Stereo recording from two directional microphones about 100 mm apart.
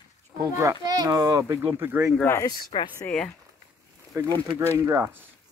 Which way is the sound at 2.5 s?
50° left (ahead or behind).